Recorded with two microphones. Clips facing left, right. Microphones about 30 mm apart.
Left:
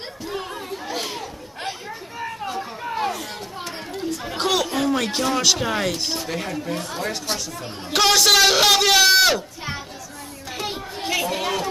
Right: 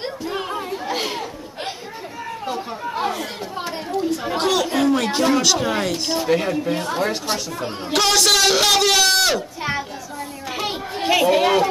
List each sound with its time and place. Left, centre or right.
0.3 s chatter: right
3.1 s chatter: centre
4.4 s chatter: centre
4.7 s a sound: centre
5.4 s a man's voice: centre
6.2 s speech: centre
7.9 s a man's voice: centre
9.6 s children playing: centre
10.6 s chatter: right